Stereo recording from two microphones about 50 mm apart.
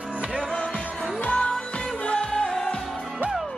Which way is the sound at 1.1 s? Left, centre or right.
Left.